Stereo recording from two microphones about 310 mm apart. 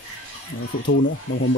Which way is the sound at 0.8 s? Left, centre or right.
Left.